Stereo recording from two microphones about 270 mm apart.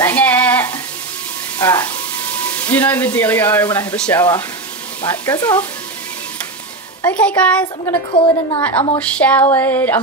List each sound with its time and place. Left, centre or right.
0.0 s frying: centre
1.6 s speech: centre
7.0 s speech: centre
7.6 s a woman's voice: centre